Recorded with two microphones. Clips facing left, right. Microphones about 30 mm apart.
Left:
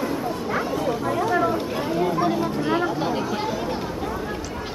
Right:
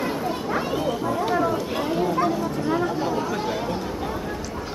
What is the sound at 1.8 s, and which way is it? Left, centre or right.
Chatter, centre.